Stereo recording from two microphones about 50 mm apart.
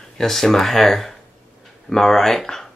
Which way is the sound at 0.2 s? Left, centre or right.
Centre.